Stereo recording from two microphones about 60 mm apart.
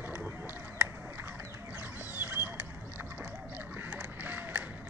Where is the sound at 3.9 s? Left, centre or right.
Right.